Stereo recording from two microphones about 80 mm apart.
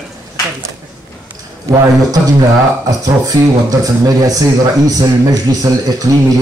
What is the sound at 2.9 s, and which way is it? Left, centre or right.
A man's voice, right.